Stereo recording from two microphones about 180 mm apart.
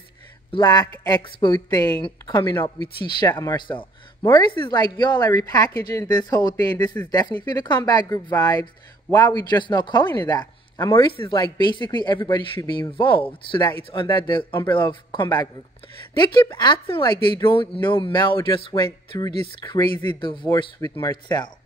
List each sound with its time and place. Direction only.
0.5 s speech: 25° left (ahead or behind)